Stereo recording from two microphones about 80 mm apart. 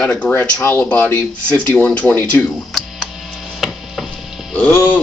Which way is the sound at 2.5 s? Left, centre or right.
Centre.